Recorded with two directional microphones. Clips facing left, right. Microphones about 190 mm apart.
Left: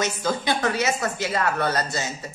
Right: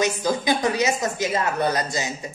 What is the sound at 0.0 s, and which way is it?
Speech, 15° right (ahead or behind).